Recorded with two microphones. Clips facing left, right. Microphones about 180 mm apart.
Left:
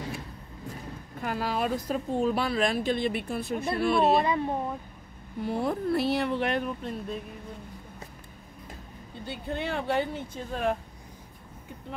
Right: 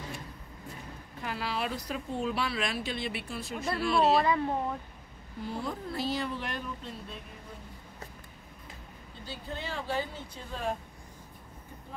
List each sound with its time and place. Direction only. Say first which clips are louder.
1.2 s a woman's voice: left 5 dB; 45° left (ahead or behind)
4.2 s speech: left 1 dB; 20° left (ahead or behind)
5.4 s speech: left 7 dB; 60° left (ahead or behind)
9.2 s speech: left 6 dB; 60° left (ahead or behind)